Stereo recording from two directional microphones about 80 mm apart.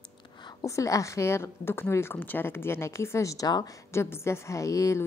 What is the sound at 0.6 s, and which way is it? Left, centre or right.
Speech, left.